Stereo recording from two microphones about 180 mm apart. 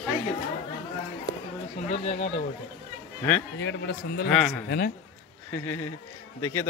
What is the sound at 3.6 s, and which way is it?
Speech, 75° left (ahead or behind).